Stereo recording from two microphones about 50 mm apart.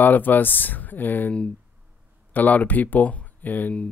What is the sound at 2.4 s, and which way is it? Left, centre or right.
Speech, left.